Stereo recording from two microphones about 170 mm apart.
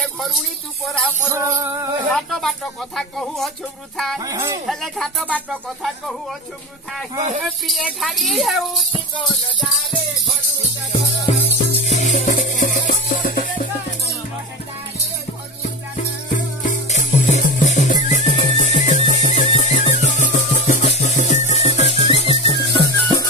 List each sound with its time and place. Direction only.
0.9 s speech: 5° left (ahead or behind)
1.3 s music: 15° right (ahead or behind)
2.1 s speech: centre (ahead or behind)
4.2 s speech: 20° right (ahead or behind)
4.6 s speech: centre (ahead or behind)
7.4 s speech: centre (ahead or behind)
9.6 s music: centre (ahead or behind)
11.5 s music: 40° left (ahead or behind)
16.3 s music: 50° left (ahead or behind); by 23.2 s 20° left (ahead or behind)